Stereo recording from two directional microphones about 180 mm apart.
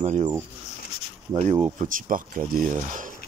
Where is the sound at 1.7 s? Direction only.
50° right (ahead or behind).